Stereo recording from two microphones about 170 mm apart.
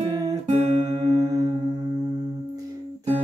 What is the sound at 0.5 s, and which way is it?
Music, 40° right (ahead or behind).